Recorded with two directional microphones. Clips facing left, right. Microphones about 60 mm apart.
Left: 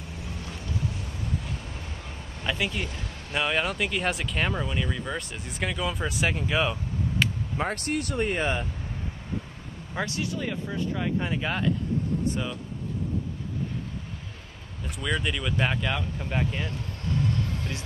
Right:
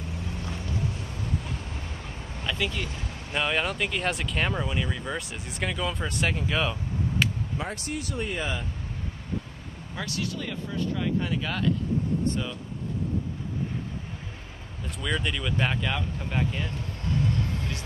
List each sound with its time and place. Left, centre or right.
2.4 s a sound: centre
3.3 s speech: centre
7.5 s speech: left
9.9 s speech: left
15.0 s speech: centre